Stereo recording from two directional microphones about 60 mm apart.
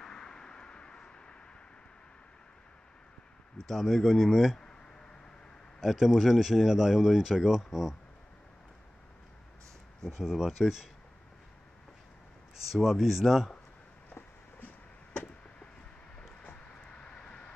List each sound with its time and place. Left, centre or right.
0.0 s vehicle: centre
3.6 s speech: centre
5.8 s speech: centre
10.2 s speech: centre
12.7 s speech: centre
17.0 s vehicle: centre